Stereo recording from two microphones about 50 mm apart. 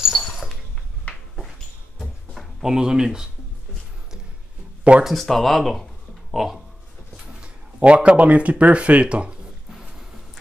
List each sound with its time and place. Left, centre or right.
1.1 s a sound: left
2.0 s a sound: centre
2.7 s speech: centre
5.0 s speech: centre
7.3 s speech: right
9.7 s music: centre